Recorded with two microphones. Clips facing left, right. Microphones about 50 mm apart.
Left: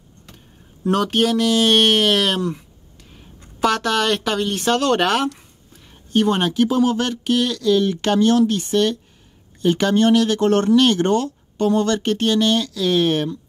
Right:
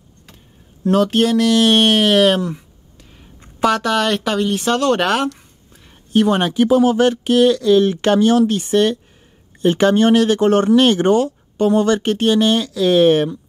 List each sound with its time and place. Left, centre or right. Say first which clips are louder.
0.8 s speech: right 3 dB; centre; by 13.4 s right